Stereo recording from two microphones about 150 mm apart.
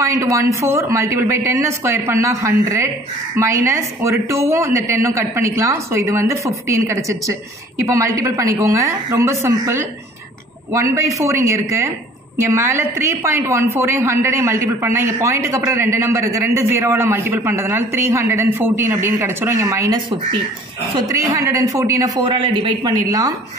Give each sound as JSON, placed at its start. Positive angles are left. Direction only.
{"t": 0.0, "sound": "a man's voice", "side_deg": -20}